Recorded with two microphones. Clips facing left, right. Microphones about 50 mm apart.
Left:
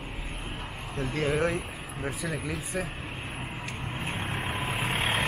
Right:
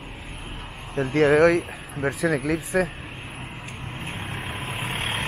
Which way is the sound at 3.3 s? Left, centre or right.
Centre.